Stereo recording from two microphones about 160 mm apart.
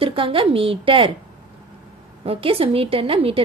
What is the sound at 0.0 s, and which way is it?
A woman's voice, 35° right (ahead or behind).